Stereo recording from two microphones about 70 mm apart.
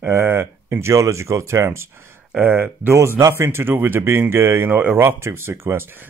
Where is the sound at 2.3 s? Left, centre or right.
Right.